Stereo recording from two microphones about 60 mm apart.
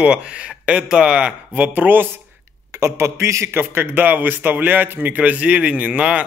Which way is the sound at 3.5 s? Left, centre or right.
Right.